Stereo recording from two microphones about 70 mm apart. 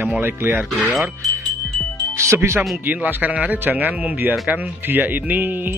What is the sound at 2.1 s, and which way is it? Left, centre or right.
Speech, right.